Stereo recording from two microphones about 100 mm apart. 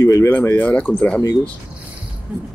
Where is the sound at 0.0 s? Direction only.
30° left (ahead or behind).